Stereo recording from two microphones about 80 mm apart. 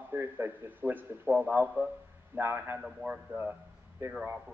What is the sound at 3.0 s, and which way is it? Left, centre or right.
Speech, centre.